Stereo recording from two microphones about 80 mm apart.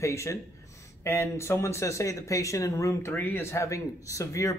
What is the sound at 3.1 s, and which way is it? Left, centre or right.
Speech, left.